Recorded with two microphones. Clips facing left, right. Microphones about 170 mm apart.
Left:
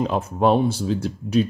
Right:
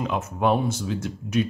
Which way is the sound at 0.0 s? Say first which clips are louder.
Left 4 dB; 35° left (ahead or behind).